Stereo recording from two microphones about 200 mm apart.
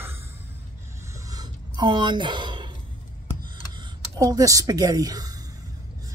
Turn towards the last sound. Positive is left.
turn(degrees=-15)  # may be behind; listen again after turning